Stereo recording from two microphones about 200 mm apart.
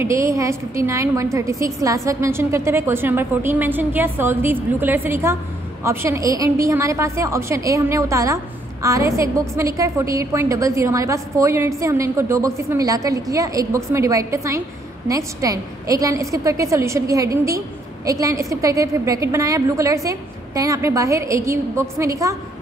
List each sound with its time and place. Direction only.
0.0 s a woman's voice: 15° right (ahead or behind)